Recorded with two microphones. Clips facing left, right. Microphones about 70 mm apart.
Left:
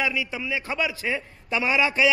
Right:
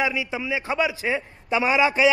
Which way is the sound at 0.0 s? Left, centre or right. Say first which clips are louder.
Right 2 dB; right.